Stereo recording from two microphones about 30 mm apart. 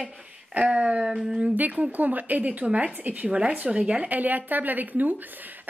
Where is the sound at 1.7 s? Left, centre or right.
Right.